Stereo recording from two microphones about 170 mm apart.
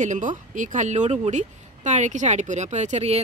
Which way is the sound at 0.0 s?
50° right (ahead or behind).